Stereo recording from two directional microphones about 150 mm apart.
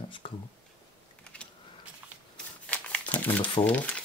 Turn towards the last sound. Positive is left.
turn(degrees=10)  # may be behind; listen again after turning